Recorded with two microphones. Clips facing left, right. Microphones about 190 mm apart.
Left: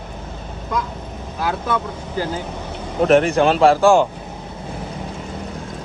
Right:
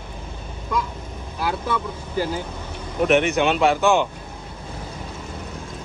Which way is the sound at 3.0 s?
30° left (ahead or behind).